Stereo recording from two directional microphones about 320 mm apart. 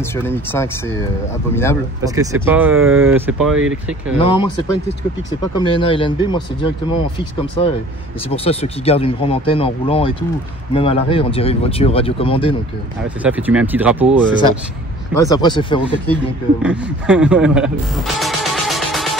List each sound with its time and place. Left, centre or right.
0.1 s speech: centre
2.0 s speech: centre
4.2 s speech: centre
5.6 s speech: centre
13.2 s speech: centre
15.1 s speech: centre
16.6 s speech: centre